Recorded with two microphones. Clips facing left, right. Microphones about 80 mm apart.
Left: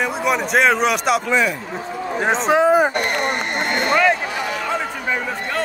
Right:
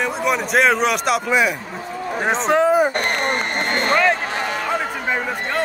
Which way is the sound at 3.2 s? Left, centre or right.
Right.